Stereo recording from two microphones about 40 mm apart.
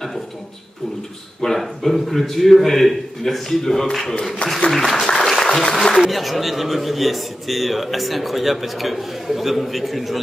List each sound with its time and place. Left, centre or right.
1.4 s a man's voice: centre
4.0 s speech: left
4.6 s speech: centre
5.1 s applause: centre
5.4 s speech: centre
5.9 s a man's voice: centre